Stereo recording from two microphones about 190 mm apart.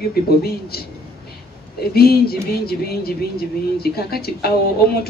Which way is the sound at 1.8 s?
55° left (ahead or behind).